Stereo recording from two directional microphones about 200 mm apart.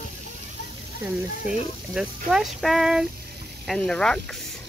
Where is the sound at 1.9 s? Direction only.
Centre (ahead or behind).